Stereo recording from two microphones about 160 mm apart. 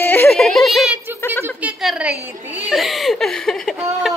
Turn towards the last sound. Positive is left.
turn(degrees=0)  # may be behind; listen again after turning